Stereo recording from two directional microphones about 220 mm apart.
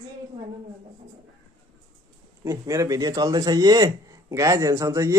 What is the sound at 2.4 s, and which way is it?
Speech, 15° right (ahead or behind).